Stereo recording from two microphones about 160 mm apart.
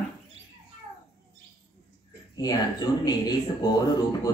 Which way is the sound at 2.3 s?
25° left (ahead or behind).